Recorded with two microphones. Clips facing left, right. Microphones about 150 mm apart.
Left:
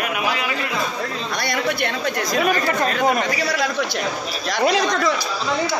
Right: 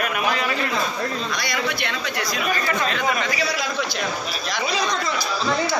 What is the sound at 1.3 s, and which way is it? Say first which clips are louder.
Speech: left 3 dB; 55° left (ahead or behind).